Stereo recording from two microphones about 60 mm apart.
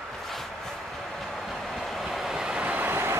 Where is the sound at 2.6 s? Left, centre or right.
Right.